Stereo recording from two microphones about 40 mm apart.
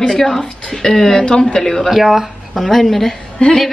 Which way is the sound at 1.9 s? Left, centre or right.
Centre.